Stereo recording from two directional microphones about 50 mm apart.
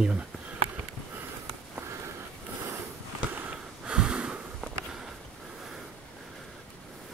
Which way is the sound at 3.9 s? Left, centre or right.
Centre.